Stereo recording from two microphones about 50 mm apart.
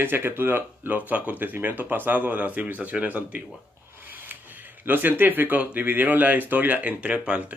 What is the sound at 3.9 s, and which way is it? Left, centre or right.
Speech, right.